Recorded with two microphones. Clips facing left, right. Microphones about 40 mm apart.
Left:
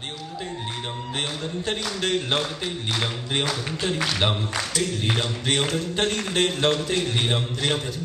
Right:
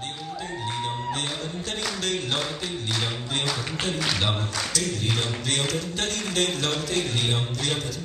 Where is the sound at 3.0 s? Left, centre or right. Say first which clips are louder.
Left 3 dB; centre.